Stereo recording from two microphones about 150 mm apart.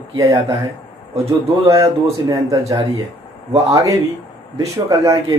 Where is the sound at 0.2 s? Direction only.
20° right (ahead or behind).